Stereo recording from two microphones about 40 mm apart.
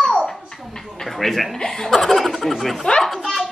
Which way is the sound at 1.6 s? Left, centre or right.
Centre.